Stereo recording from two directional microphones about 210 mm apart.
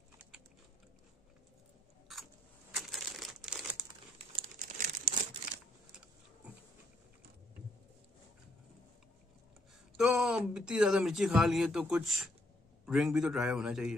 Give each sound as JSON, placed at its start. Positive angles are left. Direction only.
{"t": 2.7, "sound": "crumpling", "side_deg": 0}
{"t": 4.4, "sound": "crumpling", "side_deg": -35}
{"t": 9.9, "sound": "a man's voice", "side_deg": -5}